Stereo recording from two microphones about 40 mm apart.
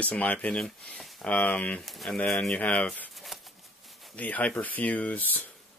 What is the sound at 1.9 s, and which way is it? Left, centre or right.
Speech, centre.